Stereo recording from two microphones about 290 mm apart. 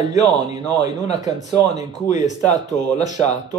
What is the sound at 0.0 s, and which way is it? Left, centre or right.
Speech, centre.